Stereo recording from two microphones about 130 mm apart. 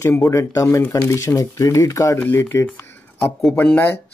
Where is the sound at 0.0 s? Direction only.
20° left (ahead or behind).